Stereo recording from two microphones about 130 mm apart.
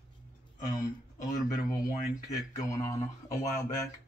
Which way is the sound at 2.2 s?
25° left (ahead or behind).